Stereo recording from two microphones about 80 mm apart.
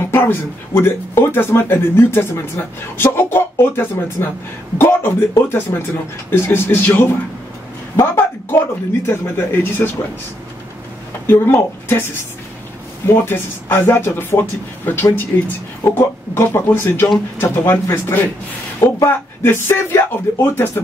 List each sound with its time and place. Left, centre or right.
0.0 s speech: left
4.7 s a sound: left
5.5 s a woman's voice: left
11.2 s speech: left
13.0 s speech: left